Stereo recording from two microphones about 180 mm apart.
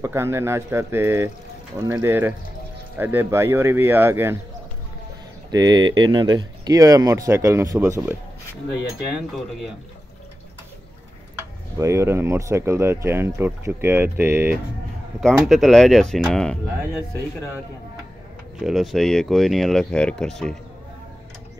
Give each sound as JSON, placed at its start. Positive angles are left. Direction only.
{"t": 0.0, "sound": "speech", "side_deg": -15}
{"t": 5.5, "sound": "speech", "side_deg": -20}
{"t": 11.3, "sound": "speech", "side_deg": -15}
{"t": 15.1, "sound": "speech", "side_deg": 0}
{"t": 18.6, "sound": "speech", "side_deg": 0}